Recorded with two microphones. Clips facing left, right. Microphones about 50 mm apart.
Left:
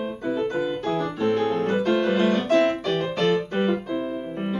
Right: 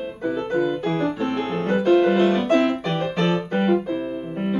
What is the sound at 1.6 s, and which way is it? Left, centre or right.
Piano, centre.